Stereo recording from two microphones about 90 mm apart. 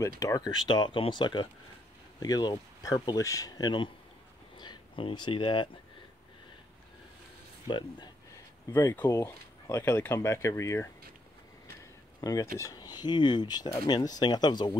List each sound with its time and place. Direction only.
0.0 s speech: 40° left (ahead or behind)
0.5 s speech: 60° left (ahead or behind)
2.1 s speech: 50° left (ahead or behind)
4.6 s a sound: 65° left (ahead or behind)
5.3 s speech: 70° left (ahead or behind)
7.6 s speech: 60° left (ahead or behind)
8.7 s speech: 25° left (ahead or behind)
12.2 s speech: 40° left (ahead or behind)
12.7 s speech: 50° left (ahead or behind)